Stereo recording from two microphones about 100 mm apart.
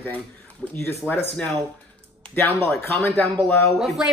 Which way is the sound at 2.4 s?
25° left (ahead or behind).